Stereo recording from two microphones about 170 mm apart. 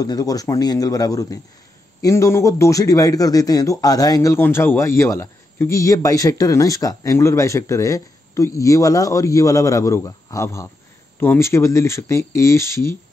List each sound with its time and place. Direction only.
0.0 s a man's voice: 20° left (ahead or behind)